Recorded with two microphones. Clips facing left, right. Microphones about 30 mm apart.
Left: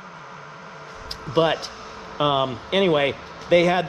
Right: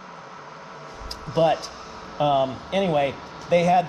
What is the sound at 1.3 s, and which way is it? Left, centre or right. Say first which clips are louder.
Speech: even; left.